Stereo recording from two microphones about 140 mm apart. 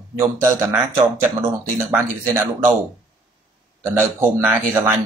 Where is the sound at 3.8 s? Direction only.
20° right (ahead or behind).